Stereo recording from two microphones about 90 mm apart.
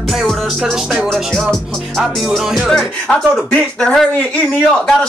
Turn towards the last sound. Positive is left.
turn(degrees=5)  # may be behind; listen again after turning